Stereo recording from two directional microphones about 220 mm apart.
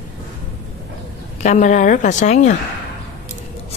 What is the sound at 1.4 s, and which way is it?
A woman's voice, 35° left (ahead or behind).